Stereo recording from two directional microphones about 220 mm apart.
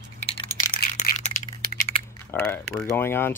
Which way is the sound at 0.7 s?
35° left (ahead or behind).